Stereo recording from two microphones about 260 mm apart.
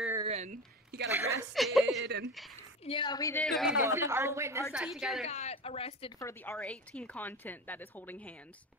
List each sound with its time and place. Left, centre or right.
0.2 s a sound: right
1.1 s speech: centre
1.5 s speech: centre
2.0 s speech: right
2.8 s a woman's voice: centre
3.4 s speech: centre
5.2 s a woman's voice: left; by 8.2 s centre